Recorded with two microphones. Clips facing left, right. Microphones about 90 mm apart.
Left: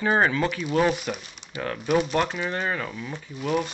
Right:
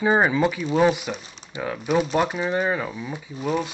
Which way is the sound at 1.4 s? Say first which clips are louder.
Right 1 dB; 40° right (ahead or behind).